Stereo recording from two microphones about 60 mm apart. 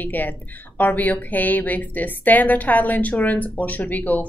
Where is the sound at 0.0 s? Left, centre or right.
Left.